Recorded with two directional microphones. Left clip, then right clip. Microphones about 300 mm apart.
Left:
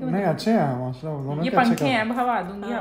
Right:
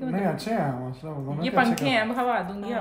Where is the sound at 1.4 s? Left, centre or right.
Centre.